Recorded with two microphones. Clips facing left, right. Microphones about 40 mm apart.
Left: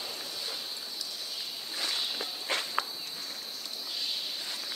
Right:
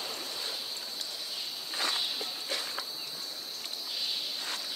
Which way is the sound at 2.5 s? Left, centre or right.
Left.